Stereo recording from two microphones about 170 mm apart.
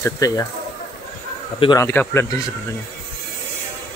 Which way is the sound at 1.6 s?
20° left (ahead or behind).